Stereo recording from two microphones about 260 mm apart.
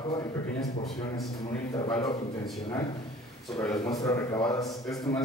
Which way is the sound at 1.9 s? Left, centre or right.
Centre.